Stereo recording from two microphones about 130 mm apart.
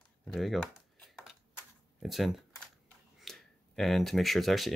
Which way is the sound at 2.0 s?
Centre (ahead or behind).